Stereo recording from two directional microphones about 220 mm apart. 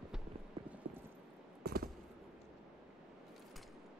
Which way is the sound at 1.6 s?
45° right (ahead or behind).